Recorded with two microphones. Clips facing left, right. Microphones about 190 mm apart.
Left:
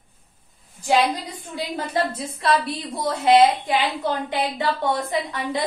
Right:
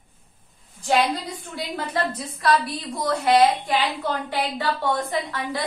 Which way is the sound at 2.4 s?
25° left (ahead or behind).